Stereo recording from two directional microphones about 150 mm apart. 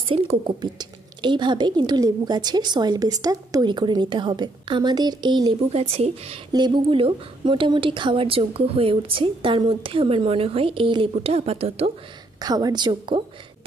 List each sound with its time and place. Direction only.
0.1 s a woman's voice: 35° right (ahead or behind)
5.7 s speech: 45° right (ahead or behind)
6.5 s a woman's voice: 30° right (ahead or behind)
12.4 s a woman's voice: 25° right (ahead or behind)